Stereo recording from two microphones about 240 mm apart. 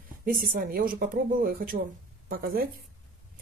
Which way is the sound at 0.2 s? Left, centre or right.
Right.